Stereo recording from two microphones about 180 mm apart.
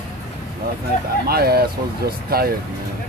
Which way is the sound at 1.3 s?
60° right (ahead or behind).